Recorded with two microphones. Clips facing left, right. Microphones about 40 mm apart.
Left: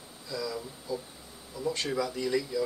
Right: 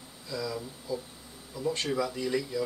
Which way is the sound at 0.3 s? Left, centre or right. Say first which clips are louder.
Even; centre.